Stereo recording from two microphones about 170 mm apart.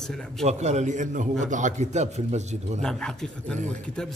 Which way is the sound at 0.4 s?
40° right (ahead or behind).